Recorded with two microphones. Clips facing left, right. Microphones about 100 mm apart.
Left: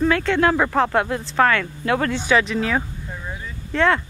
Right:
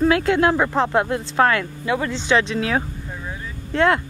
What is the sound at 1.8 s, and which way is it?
Speech, 10° right (ahead or behind).